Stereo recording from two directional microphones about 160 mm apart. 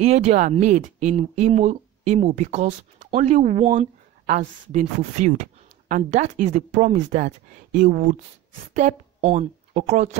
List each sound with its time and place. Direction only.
0.0 s a woman's voice: 45° right (ahead or behind)